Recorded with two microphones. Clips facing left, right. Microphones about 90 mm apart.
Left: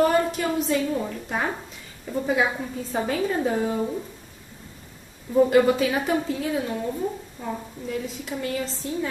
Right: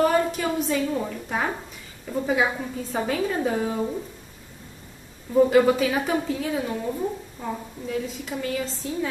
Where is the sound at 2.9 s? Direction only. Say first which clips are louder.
Left 1 dB; centre (ahead or behind).